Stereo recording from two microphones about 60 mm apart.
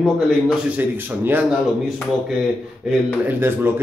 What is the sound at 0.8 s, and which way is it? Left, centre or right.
Speech, right.